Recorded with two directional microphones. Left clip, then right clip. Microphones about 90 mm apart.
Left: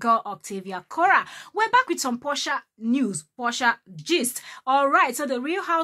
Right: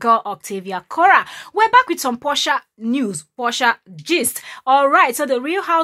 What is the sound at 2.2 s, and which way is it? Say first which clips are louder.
Speech: right 8 dB; 45° right (ahead or behind).